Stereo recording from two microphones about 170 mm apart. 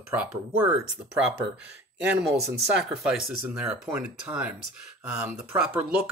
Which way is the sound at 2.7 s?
5° right (ahead or behind).